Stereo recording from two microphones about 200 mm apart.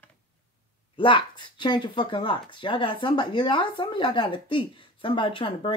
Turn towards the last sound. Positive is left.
turn(degrees=25)  # may be behind; listen again after turning